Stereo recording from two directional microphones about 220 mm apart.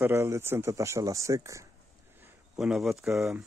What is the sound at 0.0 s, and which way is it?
Speech, 15° right (ahead or behind).